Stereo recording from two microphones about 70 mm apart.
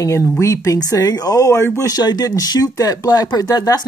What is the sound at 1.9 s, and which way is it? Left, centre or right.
A woman's voice, left.